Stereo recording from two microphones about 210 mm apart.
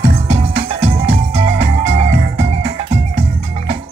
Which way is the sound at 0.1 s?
30° right (ahead or behind).